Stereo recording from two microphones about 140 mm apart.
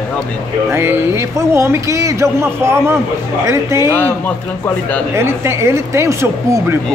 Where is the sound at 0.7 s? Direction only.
20° right (ahead or behind).